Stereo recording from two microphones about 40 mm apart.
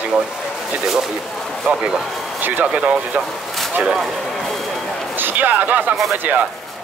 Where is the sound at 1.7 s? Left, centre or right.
Right.